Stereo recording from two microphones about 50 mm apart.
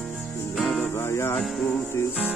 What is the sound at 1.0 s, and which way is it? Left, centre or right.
Music, left.